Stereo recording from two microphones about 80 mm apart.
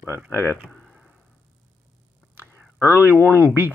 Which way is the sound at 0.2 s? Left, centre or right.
Right.